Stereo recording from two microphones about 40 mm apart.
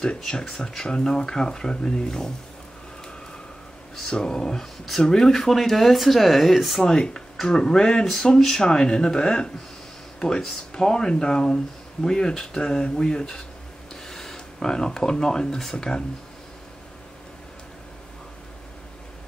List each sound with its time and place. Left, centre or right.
0.2 s speech: centre
4.1 s speech: centre
6.8 s speech: centre